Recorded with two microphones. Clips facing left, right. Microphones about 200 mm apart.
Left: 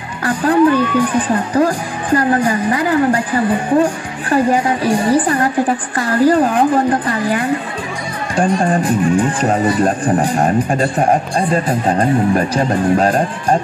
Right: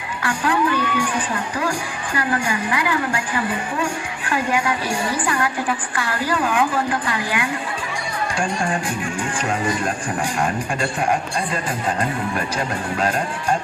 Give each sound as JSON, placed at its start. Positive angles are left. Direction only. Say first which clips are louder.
{"t": 0.2, "sound": "speech", "louder": "left 9 dB", "side_deg": 40}